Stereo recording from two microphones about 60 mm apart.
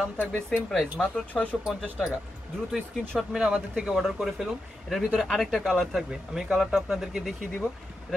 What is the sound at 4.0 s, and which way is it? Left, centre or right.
Speech, centre.